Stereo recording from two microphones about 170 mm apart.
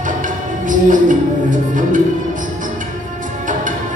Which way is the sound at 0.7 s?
50° right (ahead or behind).